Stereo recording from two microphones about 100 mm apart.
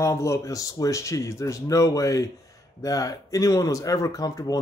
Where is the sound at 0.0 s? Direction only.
30° left (ahead or behind).